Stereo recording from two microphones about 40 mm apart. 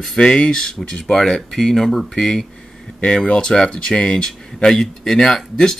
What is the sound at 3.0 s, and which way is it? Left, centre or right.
Speech, left.